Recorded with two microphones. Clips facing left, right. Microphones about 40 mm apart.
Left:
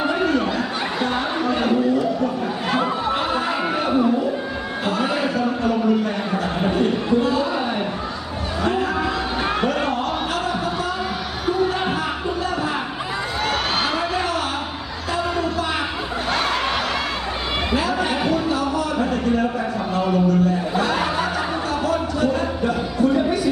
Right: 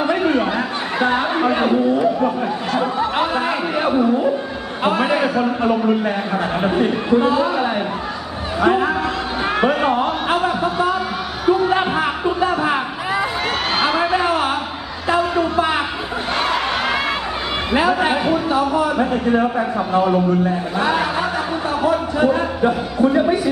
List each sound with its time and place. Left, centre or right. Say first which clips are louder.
1.0 s speech: right 7 dB; right
4.8 s speech: right 5 dB; right
7.1 s speech: right 6 dB; right
8.6 s speech: right 6 dB; right
9.4 s a sound: right 5 dB; centre
9.7 s a sound: right 5 dB; right
13.7 s a sound: right 5 dB; centre
17.7 s chatter: right 7 dB; right
18.2 s music: right 3 dB; centre
19.9 s speech: right 3 dB; right
20.8 s chuckle: right 5 dB; centre
21.8 s a sound: right 5 dB; right